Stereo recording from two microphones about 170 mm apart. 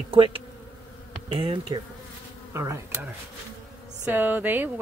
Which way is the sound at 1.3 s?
30° right (ahead or behind).